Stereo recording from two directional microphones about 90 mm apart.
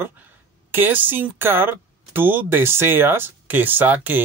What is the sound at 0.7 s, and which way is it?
Speech, 20° right (ahead or behind).